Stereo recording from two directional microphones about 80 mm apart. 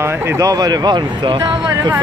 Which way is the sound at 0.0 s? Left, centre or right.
Right.